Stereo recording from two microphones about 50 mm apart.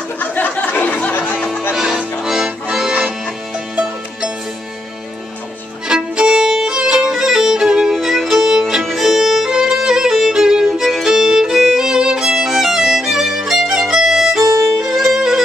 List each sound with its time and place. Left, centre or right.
0.2 s a sound: left
2.2 s accordion: centre
3.7 s music: centre
5.9 s violin: centre
8.8 s music: centre
10.7 s violin: centre